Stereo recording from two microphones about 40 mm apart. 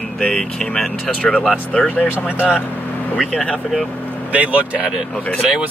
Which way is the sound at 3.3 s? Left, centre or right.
Left.